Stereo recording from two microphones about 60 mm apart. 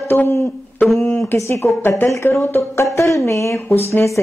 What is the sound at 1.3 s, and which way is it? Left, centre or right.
A woman's voice, left.